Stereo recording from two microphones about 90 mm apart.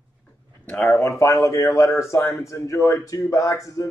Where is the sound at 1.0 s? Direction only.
35° left (ahead or behind).